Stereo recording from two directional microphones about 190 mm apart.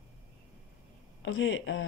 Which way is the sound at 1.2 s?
85° left.